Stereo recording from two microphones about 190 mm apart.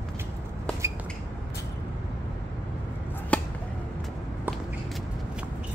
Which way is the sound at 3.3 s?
5° left (ahead or behind).